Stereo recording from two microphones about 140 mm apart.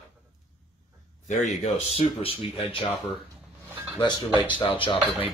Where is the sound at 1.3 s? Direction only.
55° left (ahead or behind).